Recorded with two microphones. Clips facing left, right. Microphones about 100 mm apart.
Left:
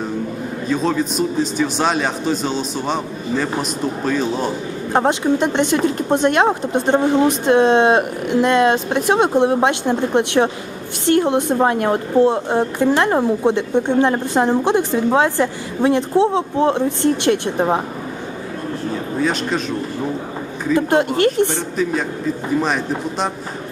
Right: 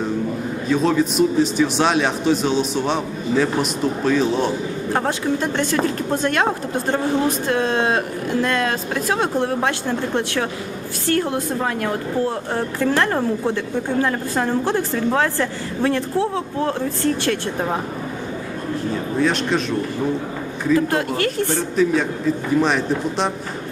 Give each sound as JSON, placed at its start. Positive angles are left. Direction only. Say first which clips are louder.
{"t": 0.7, "sound": "a man's voice", "louder": "right 1 dB", "side_deg": 0}
{"t": 4.9, "sound": "a woman's voice", "louder": "left 6 dB", "side_deg": 20}
{"t": 19.1, "sound": "a man's voice", "louder": "right 1 dB", "side_deg": 0}
{"t": 20.7, "sound": "a woman's voice", "louder": "left 3 dB", "side_deg": 25}
{"t": 22.6, "sound": "a man's voice", "louder": "right 1 dB", "side_deg": 0}